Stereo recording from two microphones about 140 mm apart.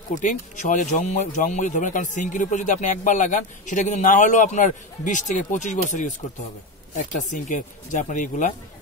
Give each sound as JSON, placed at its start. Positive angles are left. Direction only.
{"t": 0.1, "sound": "speech", "side_deg": 60}